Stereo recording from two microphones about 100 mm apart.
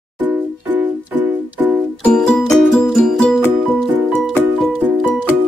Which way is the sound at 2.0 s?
10° left (ahead or behind).